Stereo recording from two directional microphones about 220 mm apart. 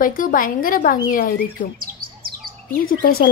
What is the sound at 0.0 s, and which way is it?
A woman's voice, 40° left (ahead or behind).